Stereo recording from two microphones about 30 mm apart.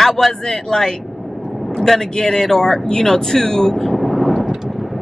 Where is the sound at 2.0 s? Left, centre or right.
Centre.